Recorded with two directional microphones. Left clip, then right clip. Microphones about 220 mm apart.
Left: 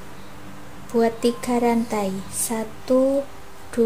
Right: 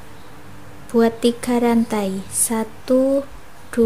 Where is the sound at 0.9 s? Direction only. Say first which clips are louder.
Right 3 dB; 20° right (ahead or behind).